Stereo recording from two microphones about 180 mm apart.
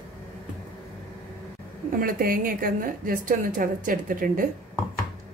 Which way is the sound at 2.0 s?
55° right (ahead or behind).